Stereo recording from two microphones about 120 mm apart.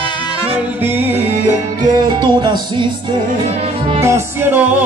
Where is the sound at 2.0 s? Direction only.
40° right (ahead or behind).